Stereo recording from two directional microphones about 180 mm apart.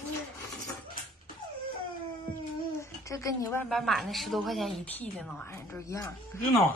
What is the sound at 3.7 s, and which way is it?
A woman's voice, centre (ahead or behind).